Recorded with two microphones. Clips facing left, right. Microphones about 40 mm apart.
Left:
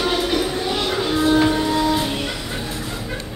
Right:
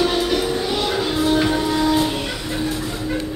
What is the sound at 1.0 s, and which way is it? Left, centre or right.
Music, left.